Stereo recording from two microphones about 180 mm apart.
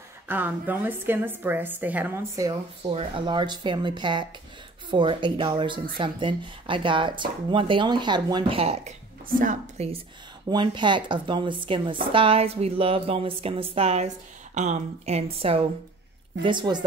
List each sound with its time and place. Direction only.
0.3 s a woman's voice: 10° right (ahead or behind)
2.8 s speech: 35° right (ahead or behind)
9.4 s a woman's voice: 45° right (ahead or behind)
10.5 s speech: 25° right (ahead or behind)